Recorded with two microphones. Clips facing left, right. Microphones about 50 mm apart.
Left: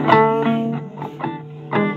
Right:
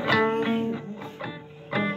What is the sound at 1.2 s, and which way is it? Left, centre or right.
Music, left.